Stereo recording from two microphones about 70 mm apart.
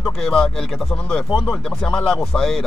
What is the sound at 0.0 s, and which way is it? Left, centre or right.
A man's voice, centre.